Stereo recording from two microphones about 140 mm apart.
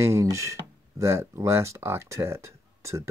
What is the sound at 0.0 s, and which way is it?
Speech, 20° right (ahead or behind).